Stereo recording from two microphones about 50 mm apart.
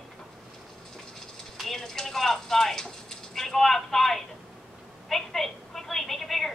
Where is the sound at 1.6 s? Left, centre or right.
Centre.